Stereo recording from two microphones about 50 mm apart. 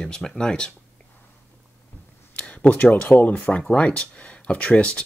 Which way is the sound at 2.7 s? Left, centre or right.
Left.